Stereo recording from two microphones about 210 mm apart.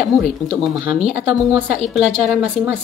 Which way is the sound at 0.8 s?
30° right (ahead or behind).